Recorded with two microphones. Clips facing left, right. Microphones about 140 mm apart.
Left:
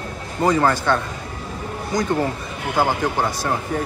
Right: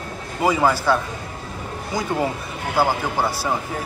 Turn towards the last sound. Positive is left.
turn(degrees=-10)  # may be behind; listen again after turning